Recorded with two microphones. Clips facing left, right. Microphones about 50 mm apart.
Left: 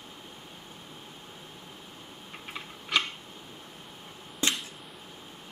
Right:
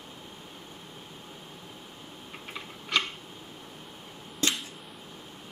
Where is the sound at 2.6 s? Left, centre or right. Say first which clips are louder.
Even; centre.